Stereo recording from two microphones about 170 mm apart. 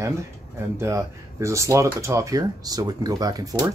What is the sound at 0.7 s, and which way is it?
Speech, 15° right (ahead or behind).